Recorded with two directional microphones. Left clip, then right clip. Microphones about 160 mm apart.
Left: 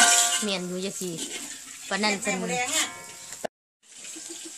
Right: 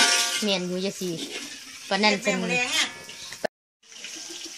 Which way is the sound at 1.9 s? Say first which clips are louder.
Right 4 dB; 35° right (ahead or behind).